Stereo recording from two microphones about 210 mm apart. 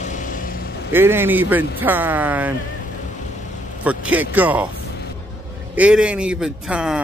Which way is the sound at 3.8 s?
5° right (ahead or behind).